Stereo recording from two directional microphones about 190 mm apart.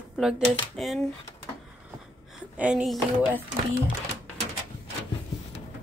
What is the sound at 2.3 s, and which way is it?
A woman's voice, 5° right (ahead or behind).